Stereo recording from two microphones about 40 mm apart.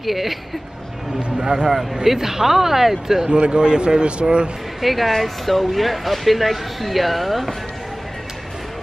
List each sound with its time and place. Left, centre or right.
0.0 s speech: centre
1.4 s a man's voice: centre
3.3 s a man's voice: right
4.8 s speech: centre